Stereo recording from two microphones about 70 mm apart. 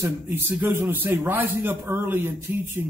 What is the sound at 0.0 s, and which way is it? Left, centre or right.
A man's voice, right.